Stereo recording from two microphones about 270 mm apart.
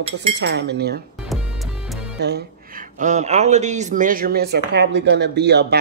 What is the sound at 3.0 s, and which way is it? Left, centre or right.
A man's voice, right.